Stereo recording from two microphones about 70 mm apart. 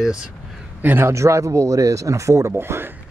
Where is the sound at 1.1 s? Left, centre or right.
Right.